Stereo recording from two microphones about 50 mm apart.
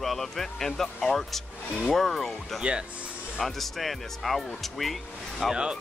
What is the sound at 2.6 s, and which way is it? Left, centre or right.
Speech, centre.